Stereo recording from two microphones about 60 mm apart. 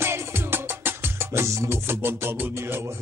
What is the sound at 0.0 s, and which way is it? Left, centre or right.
Music, right.